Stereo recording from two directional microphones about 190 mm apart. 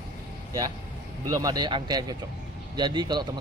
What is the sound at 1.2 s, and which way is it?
Speech, 20° right (ahead or behind).